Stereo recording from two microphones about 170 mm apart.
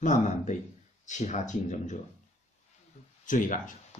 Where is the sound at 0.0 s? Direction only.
45° left (ahead or behind).